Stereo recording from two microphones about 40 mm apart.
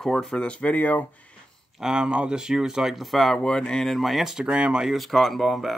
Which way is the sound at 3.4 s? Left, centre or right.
Left.